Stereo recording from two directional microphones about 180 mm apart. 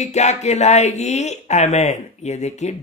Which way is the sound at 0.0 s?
40° left (ahead or behind).